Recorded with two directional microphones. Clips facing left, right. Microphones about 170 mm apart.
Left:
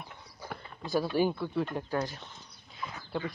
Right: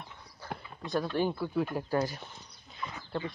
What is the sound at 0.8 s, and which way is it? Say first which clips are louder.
Speech: left 2 dB; 5° left (ahead or behind).